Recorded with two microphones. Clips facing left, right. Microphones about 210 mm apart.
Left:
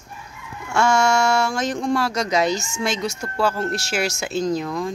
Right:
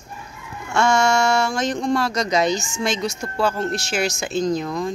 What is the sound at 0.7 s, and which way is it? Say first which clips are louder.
Speech: even; 5° left (ahead or behind).